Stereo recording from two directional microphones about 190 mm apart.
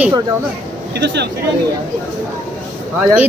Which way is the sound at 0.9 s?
60° right (ahead or behind).